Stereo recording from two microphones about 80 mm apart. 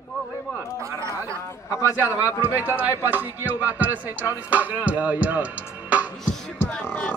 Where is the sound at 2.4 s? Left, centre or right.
Right.